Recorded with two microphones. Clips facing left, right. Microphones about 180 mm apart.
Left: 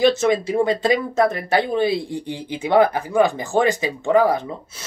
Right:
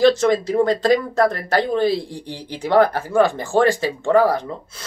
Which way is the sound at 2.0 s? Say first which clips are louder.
Left 4 dB; 20° left (ahead or behind).